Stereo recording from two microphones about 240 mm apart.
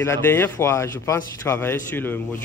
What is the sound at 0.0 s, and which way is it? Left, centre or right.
A man's voice, centre.